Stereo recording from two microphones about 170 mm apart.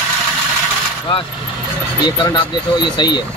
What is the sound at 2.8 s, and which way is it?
Speech, 25° left (ahead or behind).